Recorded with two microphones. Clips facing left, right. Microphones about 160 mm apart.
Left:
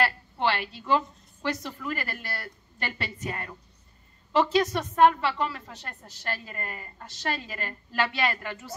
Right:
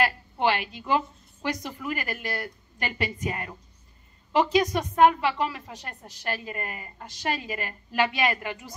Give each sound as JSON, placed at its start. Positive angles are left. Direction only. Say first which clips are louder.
{"t": 0.0, "sound": "a woman's voice", "louder": "right 2 dB", "side_deg": -15}